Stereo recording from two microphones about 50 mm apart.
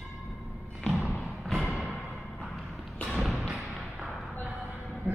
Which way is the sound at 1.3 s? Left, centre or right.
Centre.